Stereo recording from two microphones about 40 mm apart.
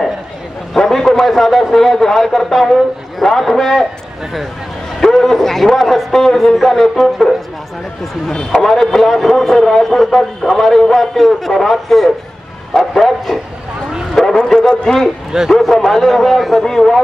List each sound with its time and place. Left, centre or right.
0.7 s a man's voice: centre
5.0 s a man's voice: centre
8.3 s a man's voice: centre
8.5 s a man's voice: centre
15.5 s a man's voice: centre